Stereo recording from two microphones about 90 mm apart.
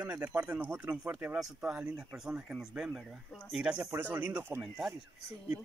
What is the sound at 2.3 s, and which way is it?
Speech, 15° right (ahead or behind).